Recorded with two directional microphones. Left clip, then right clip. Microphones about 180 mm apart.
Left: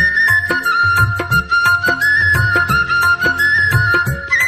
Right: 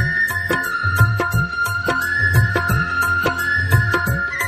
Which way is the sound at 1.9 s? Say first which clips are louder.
Left 6 dB; centre (ahead or behind).